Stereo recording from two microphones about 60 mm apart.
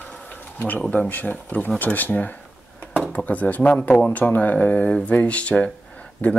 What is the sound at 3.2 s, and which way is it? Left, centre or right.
Speech, left.